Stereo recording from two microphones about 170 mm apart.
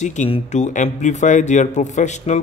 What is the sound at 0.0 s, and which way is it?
A man's voice, 45° left (ahead or behind).